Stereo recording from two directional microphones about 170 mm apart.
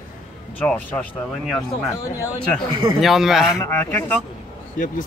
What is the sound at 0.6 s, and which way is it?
Speech, 10° left (ahead or behind).